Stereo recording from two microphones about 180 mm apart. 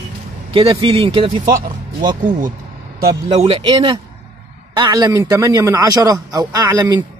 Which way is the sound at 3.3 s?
35° right (ahead or behind).